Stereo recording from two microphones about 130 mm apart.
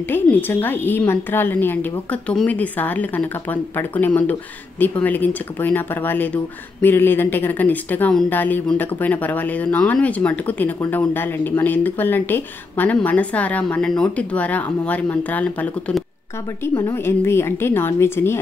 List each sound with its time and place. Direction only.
0.1 s a woman's voice: 15° left (ahead or behind)
16.9 s a woman's voice: 20° left (ahead or behind)